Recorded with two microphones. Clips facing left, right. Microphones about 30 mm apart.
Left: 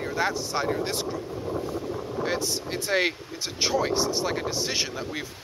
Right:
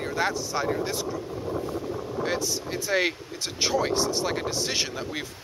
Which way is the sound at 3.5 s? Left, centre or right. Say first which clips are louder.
Even; centre.